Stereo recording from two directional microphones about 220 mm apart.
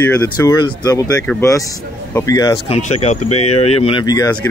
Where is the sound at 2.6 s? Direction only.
30° left (ahead or behind).